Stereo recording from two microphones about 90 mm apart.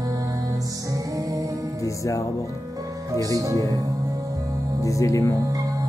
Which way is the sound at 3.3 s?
40° right (ahead or behind).